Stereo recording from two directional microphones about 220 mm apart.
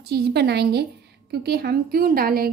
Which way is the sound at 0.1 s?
50° right (ahead or behind).